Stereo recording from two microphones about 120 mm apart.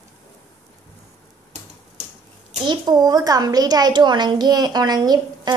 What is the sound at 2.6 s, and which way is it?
A child's voice, 35° right (ahead or behind).